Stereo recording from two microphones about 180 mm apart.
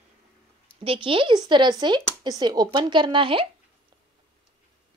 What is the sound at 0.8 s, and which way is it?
Speech, 30° right (ahead or behind).